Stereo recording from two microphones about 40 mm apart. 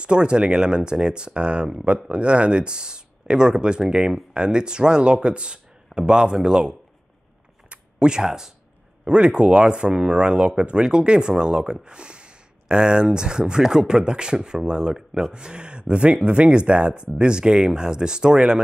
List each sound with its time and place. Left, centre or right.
0.0 s speech: right
7.7 s a sound: right
9.0 s speech: right